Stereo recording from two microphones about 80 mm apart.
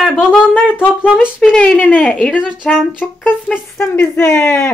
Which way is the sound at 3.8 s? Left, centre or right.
Left.